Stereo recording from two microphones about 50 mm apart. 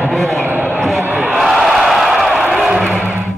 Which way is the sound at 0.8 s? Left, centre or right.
Centre.